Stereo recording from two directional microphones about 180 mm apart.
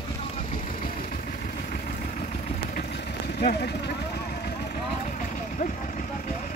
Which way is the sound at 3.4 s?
60° left (ahead or behind).